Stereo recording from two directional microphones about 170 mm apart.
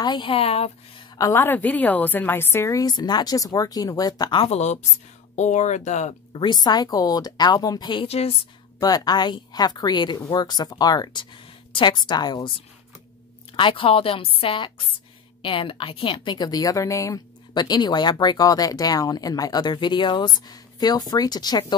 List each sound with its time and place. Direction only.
0.0 s a woman's voice: 25° left (ahead or behind)
1.1 s a woman's voice: 15° left (ahead or behind)
4.5 s a woman's voice: 40° left (ahead or behind)
6.4 s a woman's voice: 25° left (ahead or behind)
8.7 s a woman's voice: 20° left (ahead or behind)